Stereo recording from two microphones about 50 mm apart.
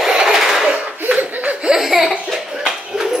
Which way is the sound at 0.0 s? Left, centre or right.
Centre.